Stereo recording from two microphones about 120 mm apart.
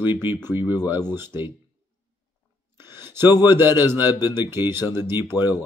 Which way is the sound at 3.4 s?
20° right (ahead or behind).